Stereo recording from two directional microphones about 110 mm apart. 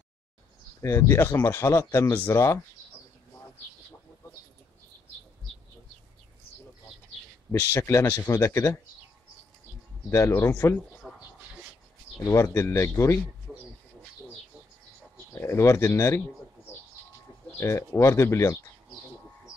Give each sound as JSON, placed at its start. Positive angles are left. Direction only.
{"t": 0.8, "sound": "speech", "side_deg": 25}
{"t": 7.7, "sound": "speech", "side_deg": 25}
{"t": 10.0, "sound": "speech", "side_deg": 20}
{"t": 11.0, "sound": "a sound", "side_deg": 0}
{"t": 12.3, "sound": "speech", "side_deg": 25}
{"t": 13.5, "sound": "bird", "side_deg": 0}
{"t": 15.3, "sound": "speech", "side_deg": 25}
{"t": 17.6, "sound": "speech", "side_deg": 25}